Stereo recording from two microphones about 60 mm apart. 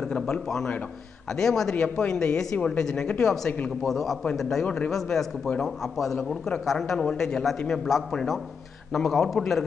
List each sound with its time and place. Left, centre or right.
1.3 s speech: centre
3.8 s a man's voice: centre
4.6 s a man's voice: left
4.9 s a man's voice: centre